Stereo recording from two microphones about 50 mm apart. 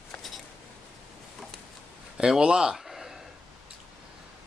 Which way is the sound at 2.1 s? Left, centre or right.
Centre.